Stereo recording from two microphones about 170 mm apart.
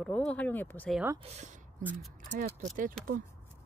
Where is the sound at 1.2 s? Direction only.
45° right (ahead or behind).